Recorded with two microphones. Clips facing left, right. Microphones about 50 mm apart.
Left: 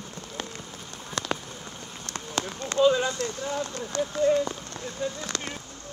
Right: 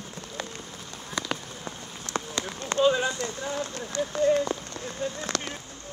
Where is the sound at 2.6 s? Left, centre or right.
Right.